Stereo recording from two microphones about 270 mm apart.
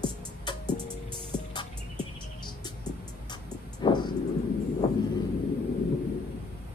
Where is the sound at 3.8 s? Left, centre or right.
Centre.